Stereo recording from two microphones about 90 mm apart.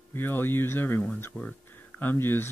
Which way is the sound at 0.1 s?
25° left (ahead or behind).